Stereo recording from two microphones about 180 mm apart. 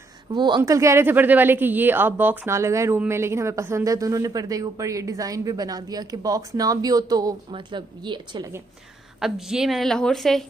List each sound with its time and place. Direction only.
0.3 s speech: 25° right (ahead or behind)
9.2 s a woman's voice: centre (ahead or behind)